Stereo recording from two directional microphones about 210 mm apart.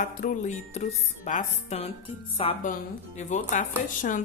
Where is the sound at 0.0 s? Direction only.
35° left (ahead or behind).